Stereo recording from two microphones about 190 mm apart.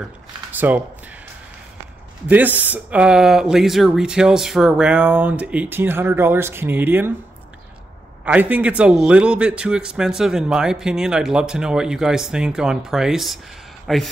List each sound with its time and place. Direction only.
0.5 s speech: 10° right (ahead or behind)
2.2 s speech: 10° right (ahead or behind)
8.3 s a man's voice: 10° right (ahead or behind)